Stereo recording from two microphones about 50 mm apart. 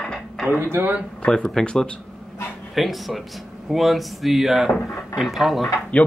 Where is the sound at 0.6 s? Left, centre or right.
Right.